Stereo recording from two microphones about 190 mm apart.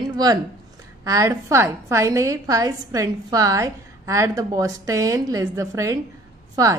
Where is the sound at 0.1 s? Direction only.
20° right (ahead or behind).